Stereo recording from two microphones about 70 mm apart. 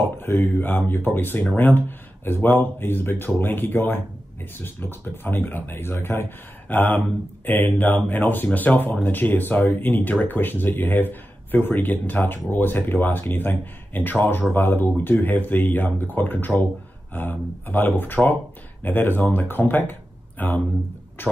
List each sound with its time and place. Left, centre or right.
0.2 s speech: left